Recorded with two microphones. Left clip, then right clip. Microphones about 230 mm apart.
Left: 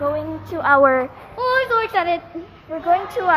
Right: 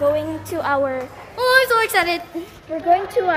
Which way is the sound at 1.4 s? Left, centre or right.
Right.